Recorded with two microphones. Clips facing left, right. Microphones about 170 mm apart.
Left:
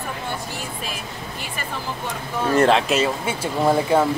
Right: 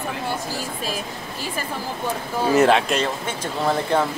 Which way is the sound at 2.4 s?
5° right (ahead or behind).